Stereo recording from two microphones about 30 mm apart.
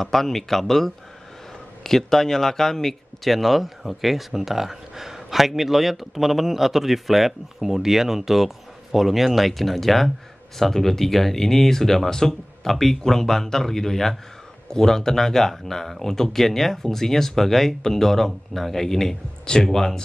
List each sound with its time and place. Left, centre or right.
0.0 s a man's voice: centre